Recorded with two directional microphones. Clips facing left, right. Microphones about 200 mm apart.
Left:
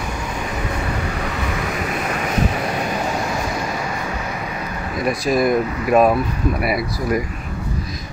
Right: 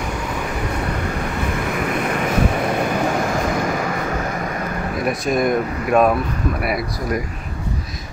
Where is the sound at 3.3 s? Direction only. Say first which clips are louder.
Right 3 dB; 55° right (ahead or behind).